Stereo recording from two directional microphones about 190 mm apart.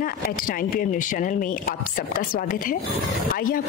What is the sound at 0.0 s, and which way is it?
Speech, 45° left (ahead or behind).